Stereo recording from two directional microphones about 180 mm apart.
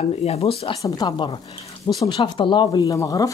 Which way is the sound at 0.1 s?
35° left (ahead or behind).